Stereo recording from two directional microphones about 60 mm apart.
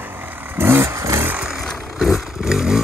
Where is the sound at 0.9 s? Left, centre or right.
Right.